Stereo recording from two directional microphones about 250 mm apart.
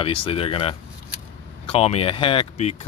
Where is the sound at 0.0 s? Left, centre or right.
Left.